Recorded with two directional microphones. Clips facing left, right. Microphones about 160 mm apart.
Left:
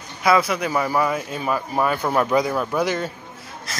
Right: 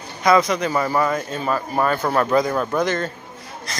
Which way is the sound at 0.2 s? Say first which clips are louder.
Right 2 dB; 5° left (ahead or behind).